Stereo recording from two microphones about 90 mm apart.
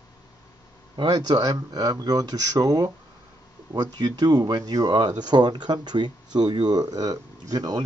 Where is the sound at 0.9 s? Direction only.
55° right (ahead or behind).